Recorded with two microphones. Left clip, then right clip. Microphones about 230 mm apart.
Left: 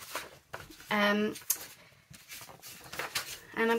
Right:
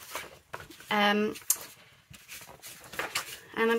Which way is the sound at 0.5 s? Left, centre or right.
Centre.